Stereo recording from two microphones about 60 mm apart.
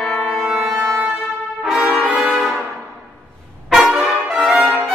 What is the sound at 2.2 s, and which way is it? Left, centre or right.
Music, centre.